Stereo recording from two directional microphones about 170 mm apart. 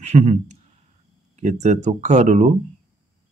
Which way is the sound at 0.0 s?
40° right (ahead or behind).